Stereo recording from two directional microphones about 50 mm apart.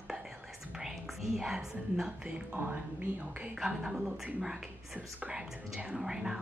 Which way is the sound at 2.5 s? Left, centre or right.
Right.